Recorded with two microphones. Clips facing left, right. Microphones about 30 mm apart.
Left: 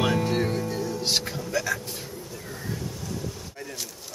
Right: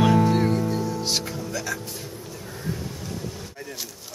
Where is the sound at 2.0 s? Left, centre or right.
Centre.